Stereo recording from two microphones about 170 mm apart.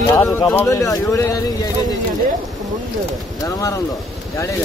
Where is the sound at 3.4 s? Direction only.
20° left (ahead or behind).